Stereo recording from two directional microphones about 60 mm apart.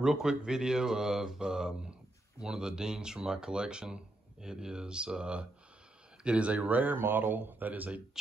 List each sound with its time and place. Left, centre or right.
0.0 s speech: centre; by 8.0 s right